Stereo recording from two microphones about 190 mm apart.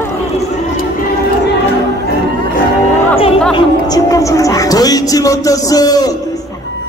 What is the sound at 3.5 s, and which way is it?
A man's voice, 20° left (ahead or behind).